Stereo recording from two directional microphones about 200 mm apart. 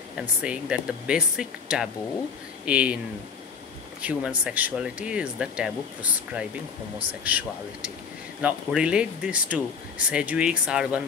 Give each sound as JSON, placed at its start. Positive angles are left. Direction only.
{"t": 0.4, "sound": "speech", "side_deg": -5}
{"t": 4.0, "sound": "speech", "side_deg": -5}